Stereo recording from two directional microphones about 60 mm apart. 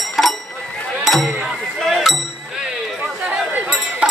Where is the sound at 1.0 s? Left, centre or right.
Centre.